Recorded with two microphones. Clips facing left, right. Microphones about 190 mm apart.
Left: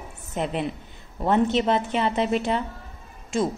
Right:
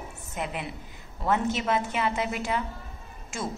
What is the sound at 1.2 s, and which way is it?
Speech, 30° left (ahead or behind).